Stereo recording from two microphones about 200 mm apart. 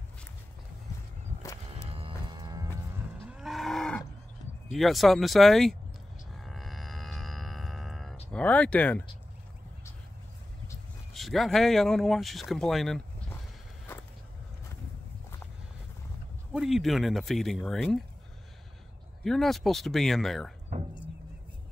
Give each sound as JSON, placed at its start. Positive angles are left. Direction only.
{"t": 1.9, "sound": "music", "side_deg": -25}
{"t": 3.3, "sound": "moo", "side_deg": -5}
{"t": 4.7, "sound": "speech", "side_deg": 0}
{"t": 6.3, "sound": "music", "side_deg": 0}
{"t": 11.1, "sound": "speech", "side_deg": 0}
{"t": 16.5, "sound": "speech", "side_deg": 0}
{"t": 19.2, "sound": "speech", "side_deg": 0}